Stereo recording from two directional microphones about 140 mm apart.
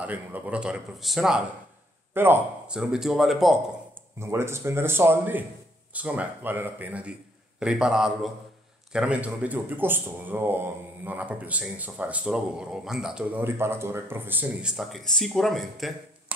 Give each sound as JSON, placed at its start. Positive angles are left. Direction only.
{"t": 0.0, "sound": "speech", "side_deg": -10}
{"t": 2.1, "sound": "speech", "side_deg": -15}
{"t": 2.8, "sound": "speech", "side_deg": -5}
{"t": 4.2, "sound": "speech", "side_deg": -20}
{"t": 16.3, "sound": "a sound", "side_deg": -10}